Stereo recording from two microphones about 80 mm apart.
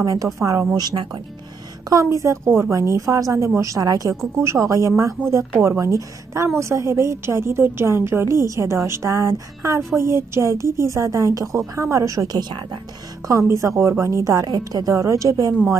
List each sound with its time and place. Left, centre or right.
0.0 s speech: right
0.7 s speech: right
1.9 s a woman's voice: right
4.4 s a woman's voice: right
13.3 s a woman's voice: right